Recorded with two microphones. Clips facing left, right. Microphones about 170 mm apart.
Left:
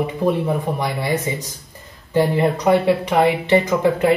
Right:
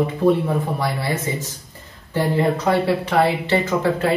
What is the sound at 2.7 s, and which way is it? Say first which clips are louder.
Speech: left 3 dB; 15° left (ahead or behind).